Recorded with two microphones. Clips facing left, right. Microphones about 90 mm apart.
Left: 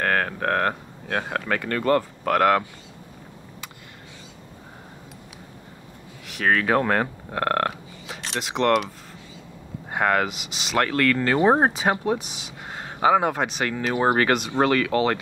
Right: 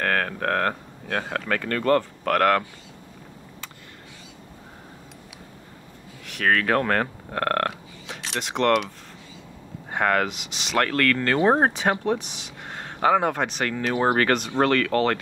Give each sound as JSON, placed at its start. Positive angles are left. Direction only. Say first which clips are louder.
{"t": 0.0, "sound": "speech", "louder": "left 1 dB", "side_deg": 20}
{"t": 6.2, "sound": "speech", "louder": "even", "side_deg": 5}